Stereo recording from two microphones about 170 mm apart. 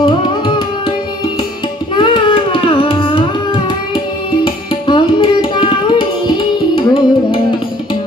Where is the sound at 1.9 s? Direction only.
30° left (ahead or behind).